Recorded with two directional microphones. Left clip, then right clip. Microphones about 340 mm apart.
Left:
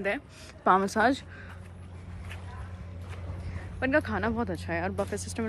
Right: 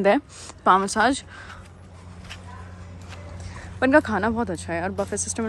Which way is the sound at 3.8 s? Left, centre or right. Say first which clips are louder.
Right 8 dB; centre.